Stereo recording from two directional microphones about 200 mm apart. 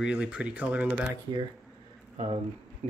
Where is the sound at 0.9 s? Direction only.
25° right (ahead or behind).